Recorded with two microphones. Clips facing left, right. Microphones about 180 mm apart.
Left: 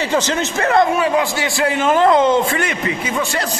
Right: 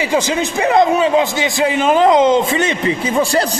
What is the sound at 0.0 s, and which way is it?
A man's voice, 10° right (ahead or behind).